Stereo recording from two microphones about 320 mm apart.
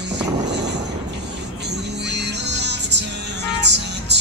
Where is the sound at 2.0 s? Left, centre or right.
Right.